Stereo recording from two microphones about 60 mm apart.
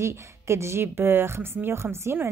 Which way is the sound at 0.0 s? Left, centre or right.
Right.